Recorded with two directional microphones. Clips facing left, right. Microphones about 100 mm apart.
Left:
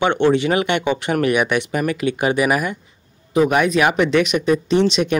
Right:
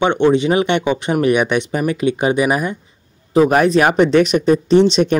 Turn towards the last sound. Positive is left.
turn(degrees=-35)  # may be behind; listen again after turning